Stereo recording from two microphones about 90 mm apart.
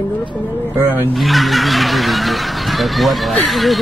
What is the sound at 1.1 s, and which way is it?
Snicker, centre (ahead or behind).